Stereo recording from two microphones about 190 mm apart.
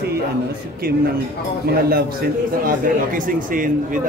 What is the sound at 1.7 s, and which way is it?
A man's voice, 50° right (ahead or behind).